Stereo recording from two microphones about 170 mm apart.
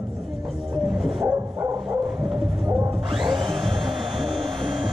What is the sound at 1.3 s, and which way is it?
Bow-wow, 15° right (ahead or behind).